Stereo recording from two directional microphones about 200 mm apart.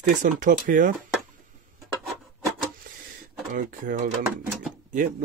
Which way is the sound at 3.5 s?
40° right (ahead or behind).